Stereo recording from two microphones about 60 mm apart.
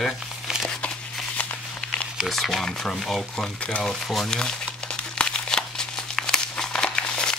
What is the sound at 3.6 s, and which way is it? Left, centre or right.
Speech, centre.